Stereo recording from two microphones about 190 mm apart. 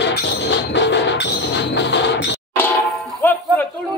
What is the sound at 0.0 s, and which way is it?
Music, 65° left (ahead or behind).